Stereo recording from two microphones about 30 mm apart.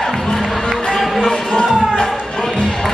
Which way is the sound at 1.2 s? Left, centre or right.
Left.